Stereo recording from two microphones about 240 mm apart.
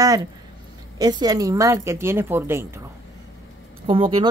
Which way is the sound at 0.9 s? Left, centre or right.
Centre.